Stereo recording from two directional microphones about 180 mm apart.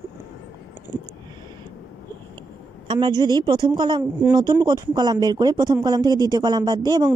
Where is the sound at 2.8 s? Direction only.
25° right (ahead or behind).